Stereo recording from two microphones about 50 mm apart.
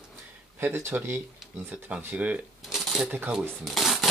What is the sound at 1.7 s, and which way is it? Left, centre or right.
Speech, right.